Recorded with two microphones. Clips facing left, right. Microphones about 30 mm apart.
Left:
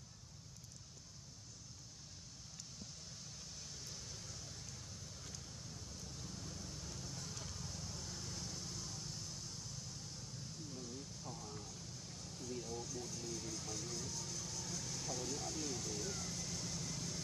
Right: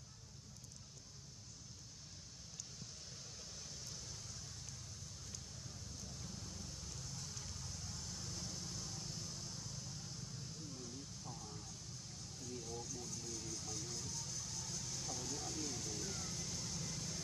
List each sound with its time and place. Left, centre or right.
6.2 s vehicle: centre
11.2 s a sound: centre
12.4 s music: centre